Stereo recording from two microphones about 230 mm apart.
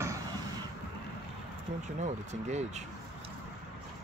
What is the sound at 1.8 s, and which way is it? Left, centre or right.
Speech, right.